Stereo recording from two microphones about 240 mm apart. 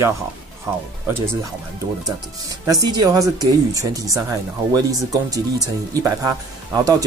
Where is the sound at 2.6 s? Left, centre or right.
Centre.